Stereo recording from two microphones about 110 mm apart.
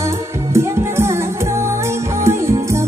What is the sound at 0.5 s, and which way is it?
Music, 25° right (ahead or behind).